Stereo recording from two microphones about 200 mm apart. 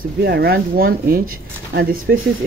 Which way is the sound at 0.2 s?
55° right (ahead or behind).